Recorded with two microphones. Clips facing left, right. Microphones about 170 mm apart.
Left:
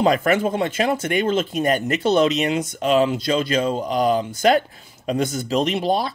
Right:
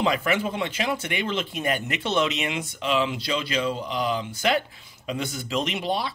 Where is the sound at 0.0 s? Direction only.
45° left (ahead or behind).